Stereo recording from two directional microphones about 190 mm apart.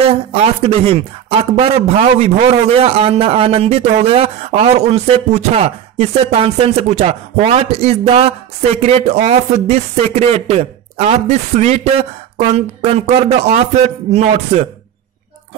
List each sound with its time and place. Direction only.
0.0 s speech: 35° right (ahead or behind)